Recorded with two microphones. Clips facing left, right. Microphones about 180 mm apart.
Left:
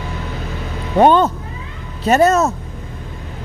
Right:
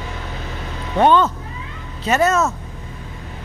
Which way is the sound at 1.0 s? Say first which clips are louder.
Left 3 dB; 40° left (ahead or behind).